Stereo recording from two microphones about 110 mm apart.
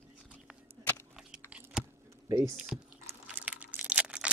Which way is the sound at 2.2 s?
25° right (ahead or behind).